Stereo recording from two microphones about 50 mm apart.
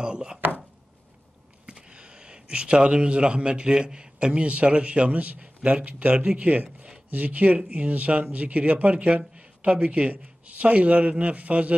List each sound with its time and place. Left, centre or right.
0.0 s speech: centre
1.7 s a man's voice: centre